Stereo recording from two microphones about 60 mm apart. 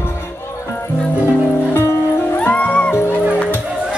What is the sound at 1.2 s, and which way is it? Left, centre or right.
Music, left.